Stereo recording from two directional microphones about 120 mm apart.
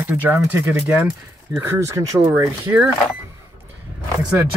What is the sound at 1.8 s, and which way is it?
Speech, 25° right (ahead or behind).